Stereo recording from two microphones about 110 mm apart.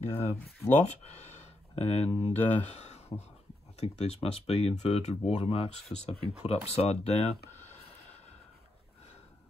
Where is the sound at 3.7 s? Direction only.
75° left (ahead or behind).